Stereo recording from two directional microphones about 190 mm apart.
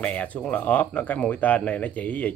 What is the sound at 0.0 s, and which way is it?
Speech, 5° left (ahead or behind).